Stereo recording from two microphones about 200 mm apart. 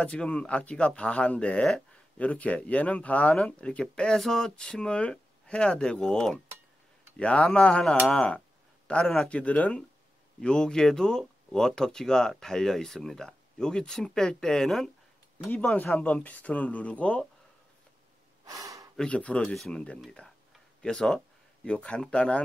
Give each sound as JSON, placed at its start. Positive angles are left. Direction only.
{"t": 0.0, "sound": "speech", "side_deg": 5}
{"t": 18.4, "sound": "gasp", "side_deg": -15}
{"t": 18.9, "sound": "speech", "side_deg": 5}